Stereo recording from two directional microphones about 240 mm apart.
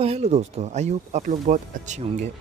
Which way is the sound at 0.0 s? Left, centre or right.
Right.